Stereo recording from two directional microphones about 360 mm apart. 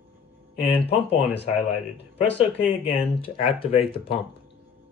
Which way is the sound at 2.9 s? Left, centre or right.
Centre.